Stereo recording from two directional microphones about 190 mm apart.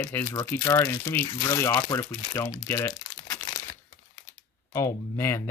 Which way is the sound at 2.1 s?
15° left (ahead or behind).